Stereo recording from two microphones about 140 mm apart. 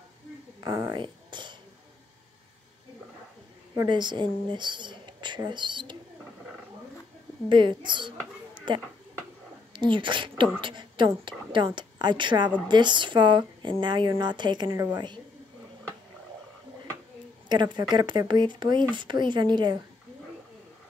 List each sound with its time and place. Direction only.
0.6 s a sound: 25° right (ahead or behind)
3.7 s speech: 30° right (ahead or behind)
7.4 s speech: 35° right (ahead or behind)
8.5 s a sound: 35° right (ahead or behind)
9.7 s a woman's voice: 35° right (ahead or behind)
17.5 s speech: 30° right (ahead or behind)